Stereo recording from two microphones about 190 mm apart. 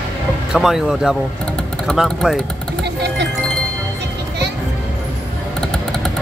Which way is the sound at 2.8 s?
65° right (ahead or behind).